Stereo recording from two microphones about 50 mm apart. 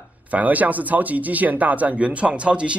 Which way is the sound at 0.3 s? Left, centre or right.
Right.